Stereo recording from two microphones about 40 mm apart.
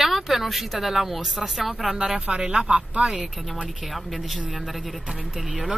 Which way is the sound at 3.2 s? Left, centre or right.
Centre.